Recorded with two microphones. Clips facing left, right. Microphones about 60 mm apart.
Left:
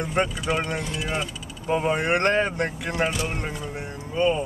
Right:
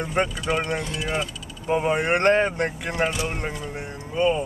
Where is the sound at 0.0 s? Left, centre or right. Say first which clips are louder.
Even; centre.